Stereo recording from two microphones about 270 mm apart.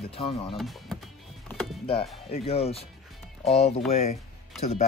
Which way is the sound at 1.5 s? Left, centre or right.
Centre.